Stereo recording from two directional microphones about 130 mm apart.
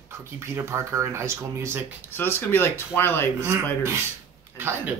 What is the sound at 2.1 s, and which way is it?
Speech, 15° left (ahead or behind).